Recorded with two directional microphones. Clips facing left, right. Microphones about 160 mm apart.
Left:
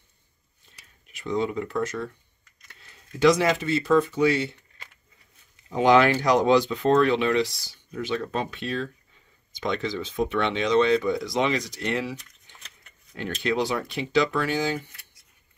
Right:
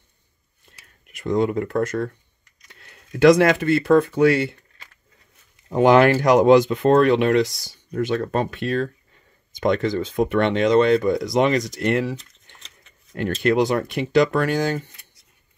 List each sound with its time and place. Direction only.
1.1 s speech: 50° right (ahead or behind)
5.7 s speech: 50° right (ahead or behind)